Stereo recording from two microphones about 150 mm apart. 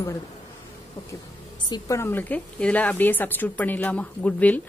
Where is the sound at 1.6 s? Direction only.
30° left (ahead or behind).